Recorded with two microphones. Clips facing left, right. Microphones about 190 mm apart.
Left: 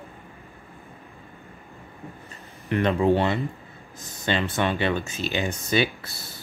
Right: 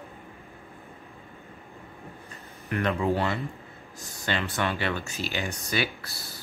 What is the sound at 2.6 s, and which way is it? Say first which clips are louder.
Speech: left 5 dB; 25° left (ahead or behind).